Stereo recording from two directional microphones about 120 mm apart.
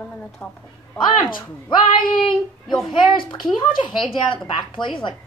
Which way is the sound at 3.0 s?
40° left (ahead or behind).